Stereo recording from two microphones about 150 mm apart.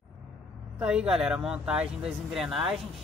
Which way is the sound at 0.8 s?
5° right (ahead or behind).